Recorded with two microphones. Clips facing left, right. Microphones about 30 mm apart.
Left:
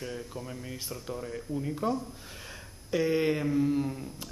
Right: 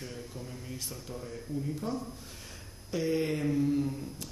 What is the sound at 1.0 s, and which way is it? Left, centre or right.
Speech, left.